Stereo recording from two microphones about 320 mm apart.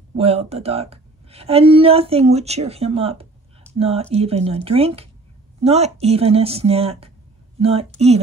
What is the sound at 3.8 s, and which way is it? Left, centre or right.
Speech, centre.